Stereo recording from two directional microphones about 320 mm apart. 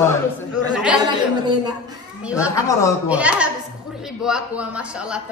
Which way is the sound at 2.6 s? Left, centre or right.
Centre.